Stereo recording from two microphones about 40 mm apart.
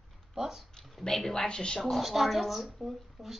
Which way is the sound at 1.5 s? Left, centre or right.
Left.